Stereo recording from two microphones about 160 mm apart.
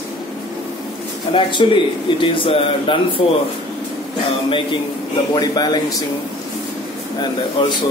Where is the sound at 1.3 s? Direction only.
30° left (ahead or behind).